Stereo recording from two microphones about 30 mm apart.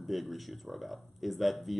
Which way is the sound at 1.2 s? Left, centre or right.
Centre.